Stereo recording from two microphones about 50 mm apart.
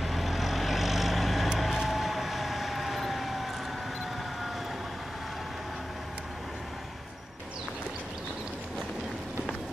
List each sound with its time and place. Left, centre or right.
0.0 s vehicle: centre